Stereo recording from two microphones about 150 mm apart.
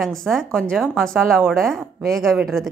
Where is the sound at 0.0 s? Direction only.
Centre (ahead or behind).